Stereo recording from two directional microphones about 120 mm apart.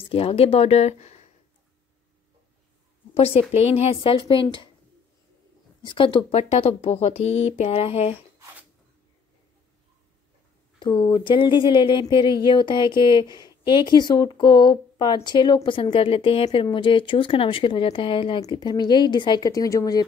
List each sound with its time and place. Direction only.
0.0 s speech: 55° left (ahead or behind)
3.5 s speech: 60° left (ahead or behind)
5.9 s speech: 45° left (ahead or behind)
6.3 s speech: 65° left (ahead or behind)
10.8 s speech: 40° left (ahead or behind)